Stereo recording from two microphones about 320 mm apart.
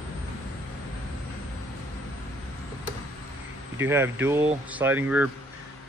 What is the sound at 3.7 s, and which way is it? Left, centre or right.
Speech, centre.